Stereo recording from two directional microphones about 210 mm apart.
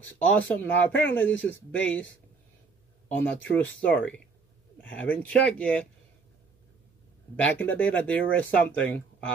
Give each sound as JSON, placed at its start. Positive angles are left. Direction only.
{"t": 0.0, "sound": "speech", "side_deg": 10}
{"t": 3.3, "sound": "speech", "side_deg": 10}
{"t": 7.3, "sound": "speech", "side_deg": 10}